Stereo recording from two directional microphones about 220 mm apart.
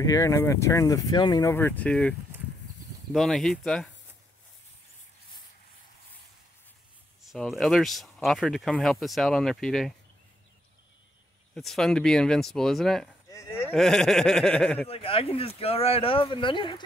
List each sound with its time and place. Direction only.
0.0 s speech: 15° left (ahead or behind)
7.2 s speech: centre (ahead or behind)
11.5 s speech: centre (ahead or behind)
13.3 s a sound: 15° left (ahead or behind)
13.7 s speech: centre (ahead or behind)
14.9 s speech: 25° left (ahead or behind)